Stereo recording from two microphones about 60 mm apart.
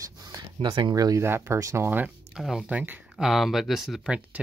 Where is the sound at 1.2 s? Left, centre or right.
Right.